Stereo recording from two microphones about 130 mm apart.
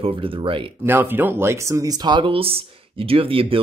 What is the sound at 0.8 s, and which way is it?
Speech, 15° right (ahead or behind).